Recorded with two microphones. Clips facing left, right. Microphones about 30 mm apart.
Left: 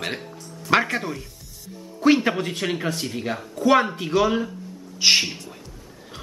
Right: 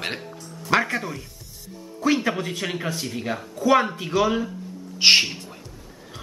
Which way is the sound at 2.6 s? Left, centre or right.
Centre.